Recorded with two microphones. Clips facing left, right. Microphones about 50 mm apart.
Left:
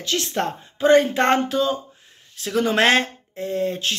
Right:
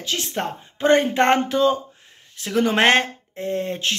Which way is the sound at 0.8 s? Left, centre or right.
Right.